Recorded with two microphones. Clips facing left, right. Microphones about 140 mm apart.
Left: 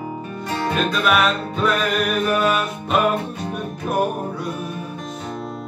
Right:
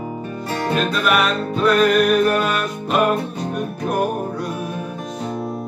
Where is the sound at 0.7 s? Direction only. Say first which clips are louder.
Right 1 dB; centre (ahead or behind).